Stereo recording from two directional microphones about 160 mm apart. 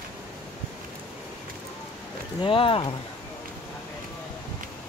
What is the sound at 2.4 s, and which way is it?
Speech, 35° left (ahead or behind).